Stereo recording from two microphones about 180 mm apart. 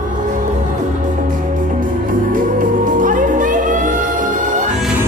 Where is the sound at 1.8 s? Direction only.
50° right (ahead or behind).